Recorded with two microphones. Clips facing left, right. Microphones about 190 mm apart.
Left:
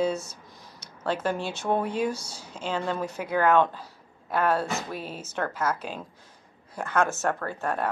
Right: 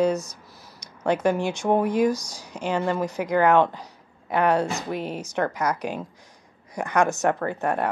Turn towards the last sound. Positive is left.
turn(degrees=-15)  # may be behind; listen again after turning